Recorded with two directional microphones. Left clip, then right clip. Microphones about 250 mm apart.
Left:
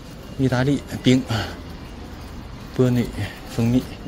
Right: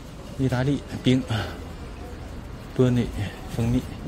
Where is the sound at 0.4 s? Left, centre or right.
Centre.